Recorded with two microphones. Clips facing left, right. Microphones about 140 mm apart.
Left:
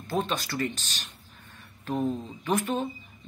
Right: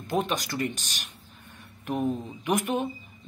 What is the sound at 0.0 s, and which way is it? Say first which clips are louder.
A woman's voice: right 1 dB; 15° right (ahead or behind).